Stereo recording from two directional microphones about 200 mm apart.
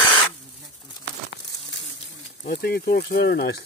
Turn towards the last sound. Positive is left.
turn(degrees=50)  # may be behind; listen again after turning